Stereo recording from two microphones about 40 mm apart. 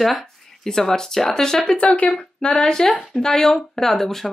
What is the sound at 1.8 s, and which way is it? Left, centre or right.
Speech, left.